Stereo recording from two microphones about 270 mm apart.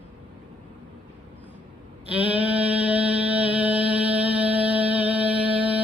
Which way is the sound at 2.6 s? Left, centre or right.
Right.